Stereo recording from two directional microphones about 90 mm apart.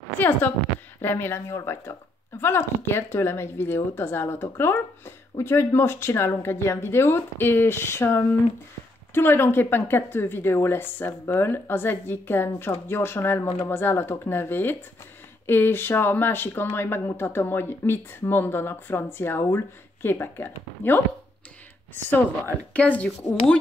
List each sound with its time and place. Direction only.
0.2 s speech: 20° left (ahead or behind)
22.7 s speech: 20° left (ahead or behind)